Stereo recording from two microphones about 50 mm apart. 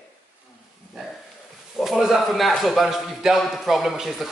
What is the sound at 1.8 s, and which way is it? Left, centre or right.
Speech, centre.